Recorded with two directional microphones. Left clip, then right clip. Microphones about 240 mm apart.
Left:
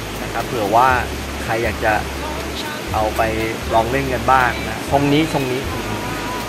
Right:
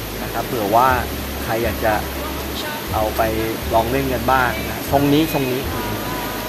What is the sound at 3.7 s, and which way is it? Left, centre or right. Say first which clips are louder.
Speech: left 1 dB; centre.